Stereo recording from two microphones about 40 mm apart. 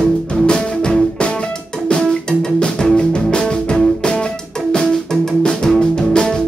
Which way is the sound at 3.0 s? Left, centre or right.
Left.